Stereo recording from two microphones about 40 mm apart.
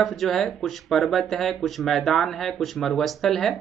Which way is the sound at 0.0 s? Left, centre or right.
Centre.